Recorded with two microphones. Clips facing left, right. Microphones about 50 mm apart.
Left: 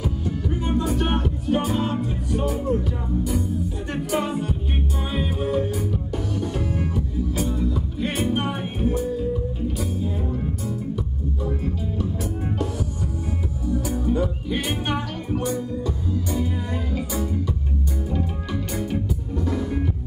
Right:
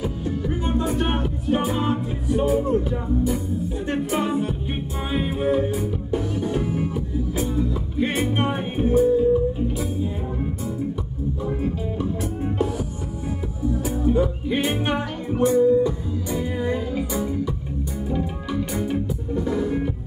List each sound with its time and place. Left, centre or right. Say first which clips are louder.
0.0 s music: right 1 dB; centre
3.8 s music: right 2 dB; centre
11.6 s music: right 2 dB; centre
19.3 s music: right 3 dB; centre